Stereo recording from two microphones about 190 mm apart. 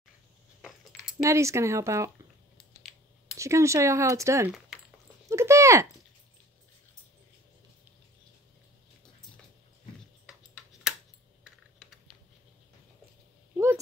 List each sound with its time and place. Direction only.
0.6 s keys jangling: 5° right (ahead or behind)
1.2 s speech: 15° right (ahead or behind)
3.3 s speech: 15° right (ahead or behind)
5.3 s a sound: 15° right (ahead or behind)
10.2 s tick-tock: 5° right (ahead or behind)